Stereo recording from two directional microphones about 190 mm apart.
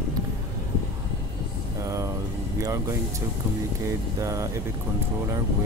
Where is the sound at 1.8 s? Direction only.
15° right (ahead or behind).